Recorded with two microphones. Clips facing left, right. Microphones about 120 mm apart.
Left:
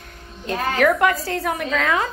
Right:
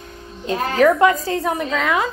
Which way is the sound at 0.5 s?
25° right (ahead or behind).